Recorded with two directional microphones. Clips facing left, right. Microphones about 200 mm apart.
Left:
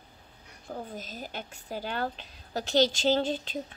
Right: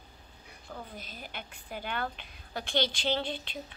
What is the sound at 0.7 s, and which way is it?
A woman's voice, 45° left (ahead or behind).